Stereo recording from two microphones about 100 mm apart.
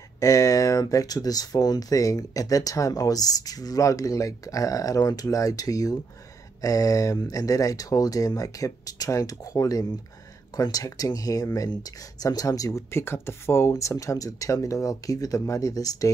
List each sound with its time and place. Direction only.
0.2 s speech: 35° left (ahead or behind)